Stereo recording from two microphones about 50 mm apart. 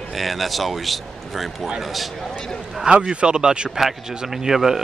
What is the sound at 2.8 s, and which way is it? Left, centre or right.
Speech, centre.